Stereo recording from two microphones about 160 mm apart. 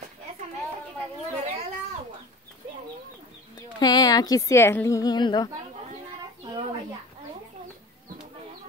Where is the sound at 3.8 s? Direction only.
25° left (ahead or behind).